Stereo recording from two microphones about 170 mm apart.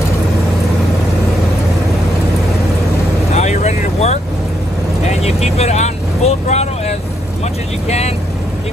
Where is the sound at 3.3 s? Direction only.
45° left (ahead or behind).